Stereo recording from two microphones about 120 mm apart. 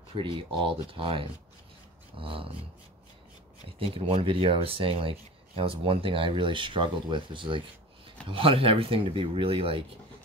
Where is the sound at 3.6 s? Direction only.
50° right (ahead or behind).